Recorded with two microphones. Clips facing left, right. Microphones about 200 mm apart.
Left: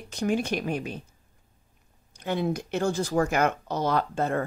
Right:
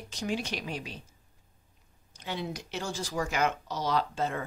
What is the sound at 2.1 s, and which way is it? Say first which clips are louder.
Speech: left 8 dB; 55° left (ahead or behind).